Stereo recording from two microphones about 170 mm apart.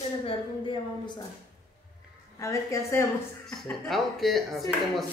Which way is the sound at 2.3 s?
15° left (ahead or behind).